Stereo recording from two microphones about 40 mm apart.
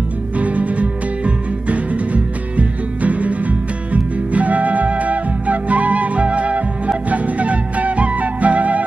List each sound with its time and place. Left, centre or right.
0.4 s music: right